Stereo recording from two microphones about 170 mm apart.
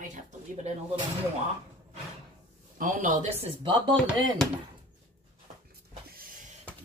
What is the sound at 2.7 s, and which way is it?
Speech, 50° right (ahead or behind).